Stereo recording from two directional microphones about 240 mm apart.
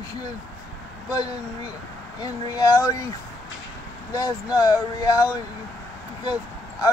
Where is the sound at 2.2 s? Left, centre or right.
Centre.